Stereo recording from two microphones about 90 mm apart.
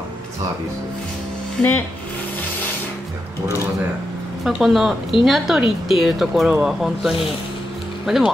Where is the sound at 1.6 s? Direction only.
25° left (ahead or behind).